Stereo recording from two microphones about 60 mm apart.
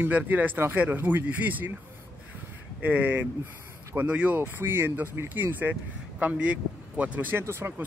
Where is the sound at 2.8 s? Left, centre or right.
Right.